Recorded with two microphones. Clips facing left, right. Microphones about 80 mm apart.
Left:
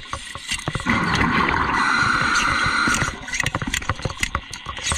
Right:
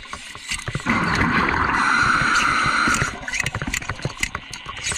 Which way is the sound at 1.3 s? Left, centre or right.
Centre.